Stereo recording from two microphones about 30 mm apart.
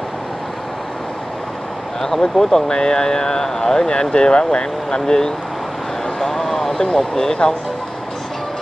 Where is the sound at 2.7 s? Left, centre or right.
Left.